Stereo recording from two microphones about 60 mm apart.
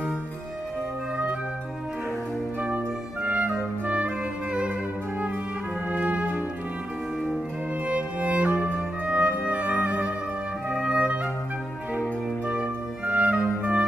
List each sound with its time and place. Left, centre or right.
2.6 s music: right
5.9 s brass instrument: right
7.8 s music: right
12.4 s music: right